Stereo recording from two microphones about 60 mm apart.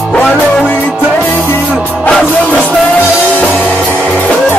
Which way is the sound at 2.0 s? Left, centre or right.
Centre.